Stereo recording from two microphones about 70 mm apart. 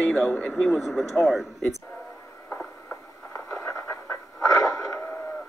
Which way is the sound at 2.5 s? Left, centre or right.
Left.